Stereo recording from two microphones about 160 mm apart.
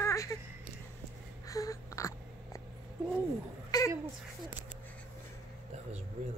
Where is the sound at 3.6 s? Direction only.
25° left (ahead or behind).